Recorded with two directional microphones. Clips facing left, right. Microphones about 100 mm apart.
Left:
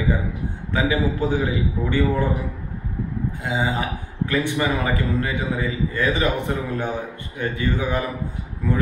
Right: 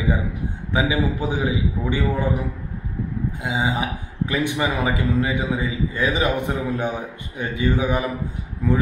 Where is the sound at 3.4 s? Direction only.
15° right (ahead or behind).